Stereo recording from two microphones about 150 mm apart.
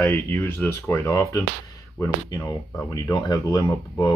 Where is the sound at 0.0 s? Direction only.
10° left (ahead or behind).